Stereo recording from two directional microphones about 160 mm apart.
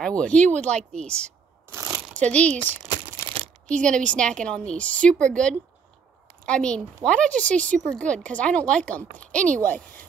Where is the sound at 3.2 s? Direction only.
35° right (ahead or behind).